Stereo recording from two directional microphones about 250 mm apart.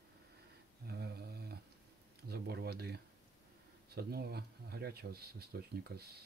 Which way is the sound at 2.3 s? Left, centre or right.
Right.